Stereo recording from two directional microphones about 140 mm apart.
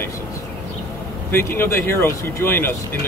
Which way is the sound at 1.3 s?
15° left (ahead or behind).